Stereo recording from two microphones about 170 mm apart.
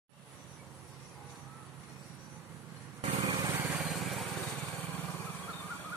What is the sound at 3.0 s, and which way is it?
Vehicle, 40° right (ahead or behind).